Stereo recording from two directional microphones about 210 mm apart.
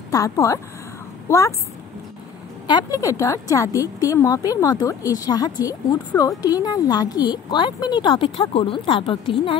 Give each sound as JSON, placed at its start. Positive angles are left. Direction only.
{"t": 0.1, "sound": "a woman's voice", "side_deg": 15}
{"t": 2.6, "sound": "a woman's voice", "side_deg": 20}